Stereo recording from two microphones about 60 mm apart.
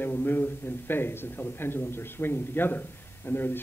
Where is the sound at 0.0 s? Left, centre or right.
Left.